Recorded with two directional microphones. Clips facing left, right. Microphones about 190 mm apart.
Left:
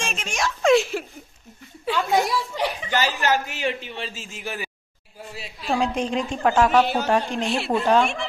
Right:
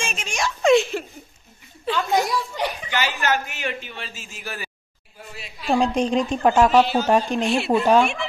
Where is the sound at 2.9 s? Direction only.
35° left (ahead or behind); by 4.6 s 20° left (ahead or behind).